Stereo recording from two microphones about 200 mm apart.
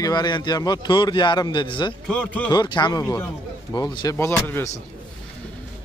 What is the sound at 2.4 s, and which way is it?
Speech, 20° left (ahead or behind).